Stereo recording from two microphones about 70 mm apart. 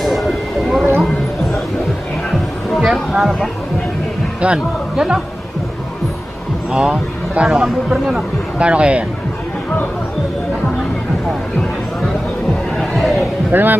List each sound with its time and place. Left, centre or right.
0.0 s vehicle: centre
2.7 s speech: centre
4.4 s a man's voice: centre
6.7 s a man's voice: centre
12.7 s chatter: centre
13.5 s a man's voice: right